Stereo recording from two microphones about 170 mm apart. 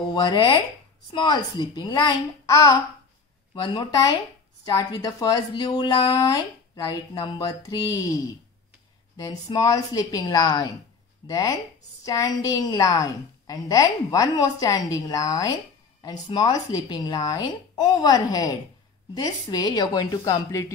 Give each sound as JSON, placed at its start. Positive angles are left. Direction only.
{"t": 0.1, "sound": "a woman's voice", "side_deg": 25}
{"t": 9.1, "sound": "a woman's voice", "side_deg": 25}